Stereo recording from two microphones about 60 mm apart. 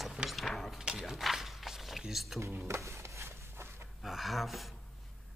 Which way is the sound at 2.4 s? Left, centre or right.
Right.